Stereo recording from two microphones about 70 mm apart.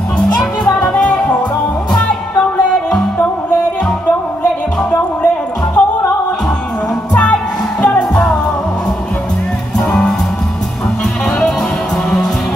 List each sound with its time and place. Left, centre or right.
0.7 s music: centre
5.8 s music: left
7.8 s music: centre
9.8 s music: centre